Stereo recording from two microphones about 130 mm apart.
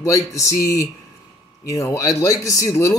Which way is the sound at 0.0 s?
25° left (ahead or behind).